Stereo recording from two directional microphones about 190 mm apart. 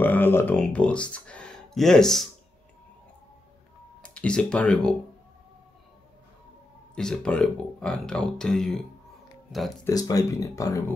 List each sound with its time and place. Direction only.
0.0 s speech: 10° left (ahead or behind)
4.0 s speech: 5° left (ahead or behind)
7.0 s speech: 5° left (ahead or behind)
9.8 s speech: 20° left (ahead or behind)